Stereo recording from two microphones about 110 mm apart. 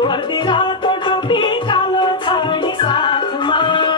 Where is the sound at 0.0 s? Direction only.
45° left (ahead or behind).